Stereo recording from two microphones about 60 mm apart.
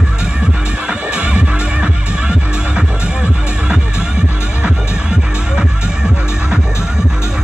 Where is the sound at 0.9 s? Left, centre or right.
Centre.